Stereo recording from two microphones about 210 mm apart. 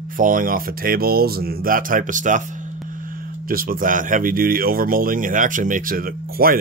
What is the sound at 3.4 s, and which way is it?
Speech, 45° right (ahead or behind).